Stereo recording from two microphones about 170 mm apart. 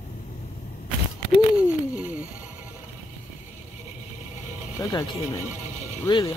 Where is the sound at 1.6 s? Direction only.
10° right (ahead or behind).